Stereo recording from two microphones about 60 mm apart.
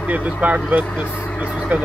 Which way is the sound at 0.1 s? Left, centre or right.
Right.